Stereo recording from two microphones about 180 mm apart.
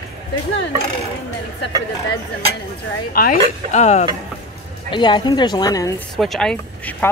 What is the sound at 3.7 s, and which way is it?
Speech, 40° left (ahead or behind).